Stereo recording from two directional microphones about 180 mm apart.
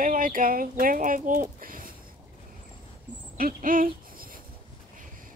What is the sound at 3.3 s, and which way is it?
Owl, 50° right (ahead or behind).